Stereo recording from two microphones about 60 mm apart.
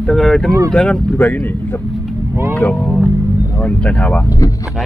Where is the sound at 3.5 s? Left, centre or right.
Left.